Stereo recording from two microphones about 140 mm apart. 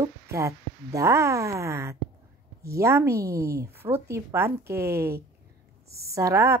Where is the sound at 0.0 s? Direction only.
20° right (ahead or behind).